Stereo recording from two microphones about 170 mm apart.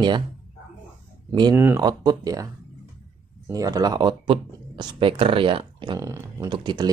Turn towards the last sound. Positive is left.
turn(degrees=-25)  # may be behind; listen again after turning